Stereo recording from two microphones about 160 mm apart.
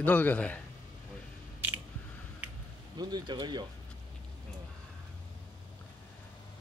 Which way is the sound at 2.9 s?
25° right (ahead or behind).